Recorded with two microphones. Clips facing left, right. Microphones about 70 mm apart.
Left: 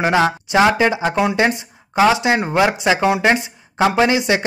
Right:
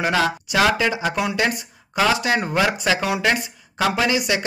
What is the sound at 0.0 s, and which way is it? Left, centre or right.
A man's voice, left.